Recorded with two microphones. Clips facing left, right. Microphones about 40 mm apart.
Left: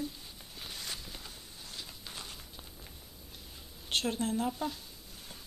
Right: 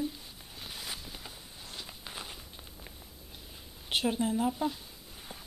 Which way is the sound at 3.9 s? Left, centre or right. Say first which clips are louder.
Right 3 dB; centre.